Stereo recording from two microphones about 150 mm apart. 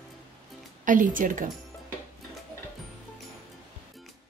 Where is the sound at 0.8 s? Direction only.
60° right (ahead or behind).